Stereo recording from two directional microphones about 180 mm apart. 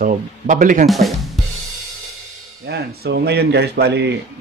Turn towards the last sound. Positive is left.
turn(degrees=-70)  # may be behind; listen again after turning